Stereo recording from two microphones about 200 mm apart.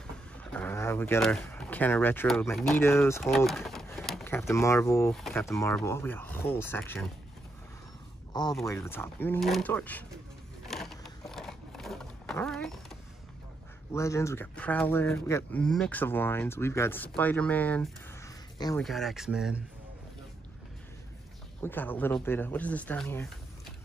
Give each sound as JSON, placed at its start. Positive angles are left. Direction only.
{"t": 0.4, "sound": "speech", "side_deg": 5}
{"t": 3.3, "sound": "speech", "side_deg": 0}
{"t": 8.3, "sound": "speech", "side_deg": 20}
{"t": 10.7, "sound": "a sound", "side_deg": 0}
{"t": 13.9, "sound": "speech", "side_deg": 15}
{"t": 21.5, "sound": "speech", "side_deg": 10}